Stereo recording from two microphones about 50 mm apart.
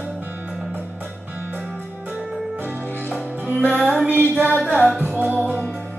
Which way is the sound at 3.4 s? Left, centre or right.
Right.